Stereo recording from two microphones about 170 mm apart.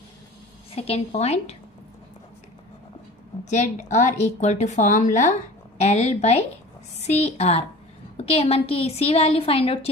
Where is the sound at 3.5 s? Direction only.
45° left (ahead or behind).